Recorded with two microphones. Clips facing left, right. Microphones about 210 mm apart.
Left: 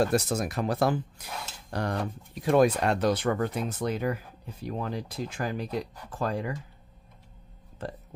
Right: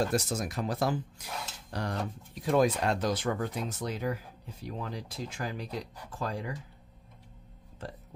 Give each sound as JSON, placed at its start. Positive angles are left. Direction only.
{"t": 0.1, "sound": "speech", "side_deg": 60}
{"t": 1.7, "sound": "cutlery", "side_deg": 55}
{"t": 2.4, "sound": "speech", "side_deg": 65}